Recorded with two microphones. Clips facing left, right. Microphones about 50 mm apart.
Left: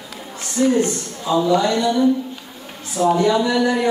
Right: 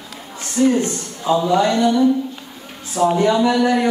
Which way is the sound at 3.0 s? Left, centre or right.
Right.